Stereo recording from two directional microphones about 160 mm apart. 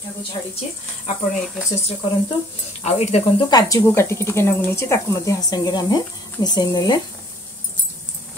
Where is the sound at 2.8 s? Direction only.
40° left (ahead or behind).